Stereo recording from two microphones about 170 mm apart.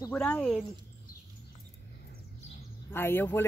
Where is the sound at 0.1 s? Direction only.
10° left (ahead or behind).